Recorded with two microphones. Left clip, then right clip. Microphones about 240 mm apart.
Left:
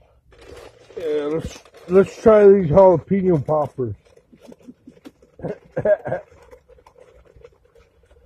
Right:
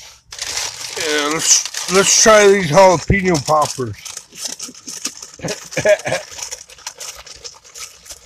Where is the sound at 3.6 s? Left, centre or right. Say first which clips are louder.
Right 5 dB; right.